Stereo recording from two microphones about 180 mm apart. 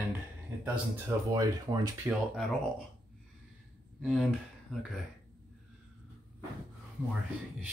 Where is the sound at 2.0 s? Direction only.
Centre (ahead or behind).